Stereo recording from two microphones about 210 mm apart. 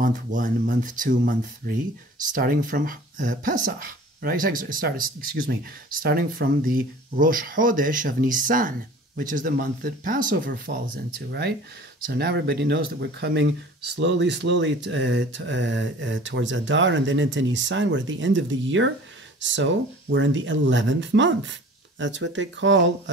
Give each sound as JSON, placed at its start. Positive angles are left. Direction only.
{"t": 0.0, "sound": "speech", "side_deg": -40}